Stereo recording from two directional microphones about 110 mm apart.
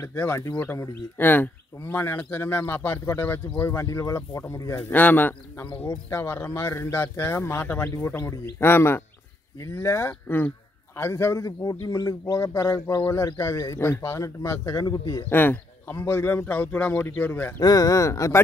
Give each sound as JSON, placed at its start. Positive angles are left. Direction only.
{"t": 0.0, "sound": "speech", "side_deg": 20}
{"t": 15.2, "sound": "speech", "side_deg": 15}
{"t": 17.6, "sound": "speech", "side_deg": 35}